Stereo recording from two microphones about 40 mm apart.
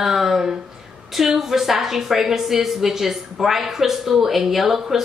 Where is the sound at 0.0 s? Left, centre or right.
Centre.